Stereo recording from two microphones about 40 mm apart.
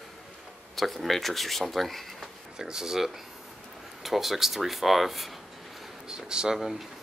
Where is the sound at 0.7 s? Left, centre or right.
Centre.